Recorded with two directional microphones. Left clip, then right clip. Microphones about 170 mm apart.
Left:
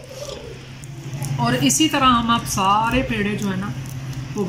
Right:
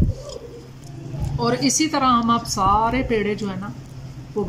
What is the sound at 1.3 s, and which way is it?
Speech, 10° right (ahead or behind).